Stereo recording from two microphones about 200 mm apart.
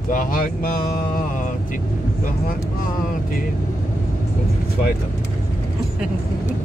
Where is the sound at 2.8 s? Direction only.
45° left (ahead or behind).